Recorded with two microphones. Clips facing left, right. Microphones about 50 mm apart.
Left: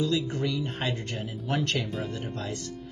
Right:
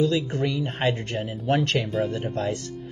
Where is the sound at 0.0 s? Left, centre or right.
Right.